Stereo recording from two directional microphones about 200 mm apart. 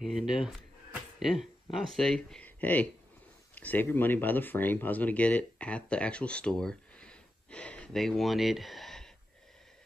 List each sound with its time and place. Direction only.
0.0 s speech: centre (ahead or behind)